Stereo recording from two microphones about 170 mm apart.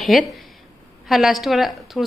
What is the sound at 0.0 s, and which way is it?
A woman's voice, centre (ahead or behind).